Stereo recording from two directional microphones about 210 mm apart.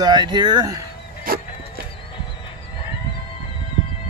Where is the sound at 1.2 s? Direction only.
45° right (ahead or behind).